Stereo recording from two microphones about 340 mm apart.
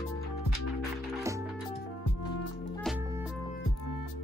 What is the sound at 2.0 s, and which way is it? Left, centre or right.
Music, left.